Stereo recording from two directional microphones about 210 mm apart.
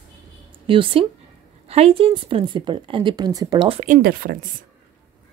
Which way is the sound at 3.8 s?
40° right (ahead or behind).